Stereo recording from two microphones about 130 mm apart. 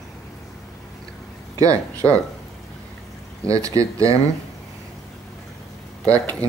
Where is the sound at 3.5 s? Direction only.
25° right (ahead or behind).